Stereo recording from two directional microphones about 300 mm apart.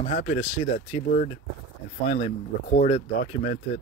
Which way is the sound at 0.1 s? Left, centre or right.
Left.